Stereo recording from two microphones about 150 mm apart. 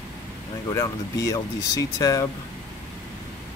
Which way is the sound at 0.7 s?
20° left (ahead or behind).